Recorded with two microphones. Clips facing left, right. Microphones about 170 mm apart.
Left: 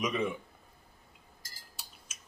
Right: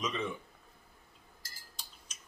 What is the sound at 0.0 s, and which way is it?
Speech, 10° left (ahead or behind).